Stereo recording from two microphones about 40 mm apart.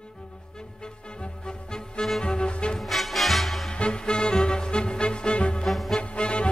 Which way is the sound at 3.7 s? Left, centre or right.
Left.